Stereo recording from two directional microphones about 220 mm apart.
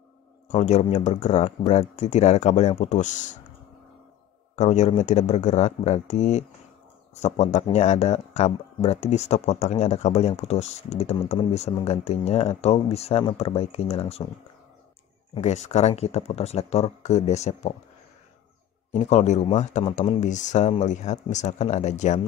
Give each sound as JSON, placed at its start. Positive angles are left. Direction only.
{"t": 0.5, "sound": "speech", "side_deg": 30}
{"t": 4.6, "sound": "speech", "side_deg": 30}
{"t": 15.3, "sound": "speech", "side_deg": 30}
{"t": 18.9, "sound": "speech", "side_deg": 30}